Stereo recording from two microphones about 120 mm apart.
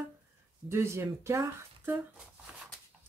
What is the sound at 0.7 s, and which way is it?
Speech, 20° right (ahead or behind).